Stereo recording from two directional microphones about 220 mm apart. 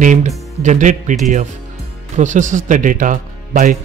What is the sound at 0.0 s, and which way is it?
Speech, 35° right (ahead or behind).